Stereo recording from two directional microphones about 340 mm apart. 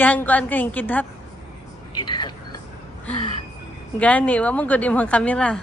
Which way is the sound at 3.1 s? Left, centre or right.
Centre.